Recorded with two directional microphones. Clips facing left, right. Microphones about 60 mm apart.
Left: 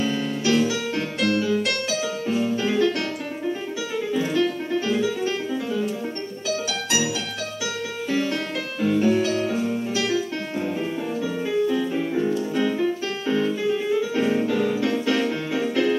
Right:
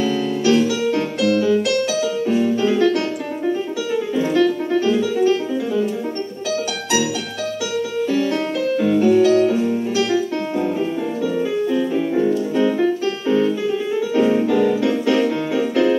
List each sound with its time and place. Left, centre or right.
0.4 s music: right
2.2 s music: right
4.2 s music: right
8.3 s music: right
11.7 s music: right
14.8 s keyboard: right